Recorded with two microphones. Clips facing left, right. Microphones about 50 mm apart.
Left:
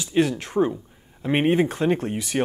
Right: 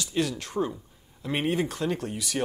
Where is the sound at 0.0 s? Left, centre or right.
Left.